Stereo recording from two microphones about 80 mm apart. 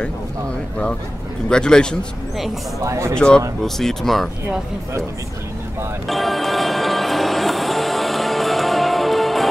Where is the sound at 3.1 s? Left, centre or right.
Centre.